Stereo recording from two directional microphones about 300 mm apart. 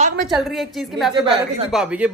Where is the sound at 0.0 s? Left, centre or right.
Right.